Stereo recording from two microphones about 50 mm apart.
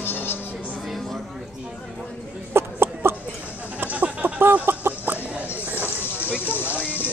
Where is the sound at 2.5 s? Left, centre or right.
Right.